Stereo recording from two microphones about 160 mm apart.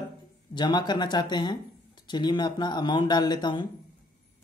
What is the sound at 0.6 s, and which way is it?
Speech, 25° left (ahead or behind).